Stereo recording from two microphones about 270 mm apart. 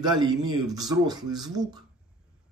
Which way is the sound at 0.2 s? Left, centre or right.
Centre.